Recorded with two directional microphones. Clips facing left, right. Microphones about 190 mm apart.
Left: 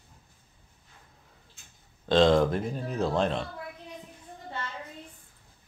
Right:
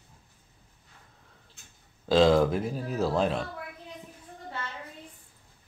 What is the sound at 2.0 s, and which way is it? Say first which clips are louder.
Speech: even; 5° right (ahead or behind).